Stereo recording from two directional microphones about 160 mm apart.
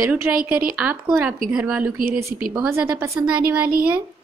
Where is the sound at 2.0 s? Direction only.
65° right (ahead or behind).